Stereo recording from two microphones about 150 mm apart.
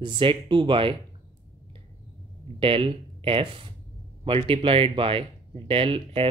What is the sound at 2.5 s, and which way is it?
Speech, 35° right (ahead or behind).